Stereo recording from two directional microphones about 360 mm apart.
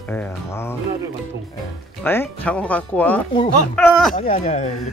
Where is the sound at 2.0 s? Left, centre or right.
Centre.